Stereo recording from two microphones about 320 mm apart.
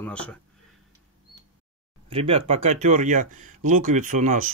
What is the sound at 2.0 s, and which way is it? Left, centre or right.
Speech, centre.